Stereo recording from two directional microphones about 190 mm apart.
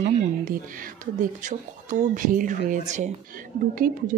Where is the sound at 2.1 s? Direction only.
45° right (ahead or behind).